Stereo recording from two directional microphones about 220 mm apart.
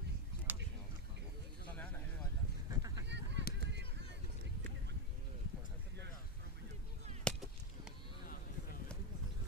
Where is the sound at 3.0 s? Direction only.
50° right (ahead or behind).